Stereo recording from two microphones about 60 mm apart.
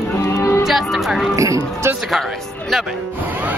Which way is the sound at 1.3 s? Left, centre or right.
Right.